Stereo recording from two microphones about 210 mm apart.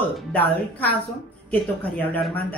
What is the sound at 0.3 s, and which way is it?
Speech, 10° left (ahead or behind).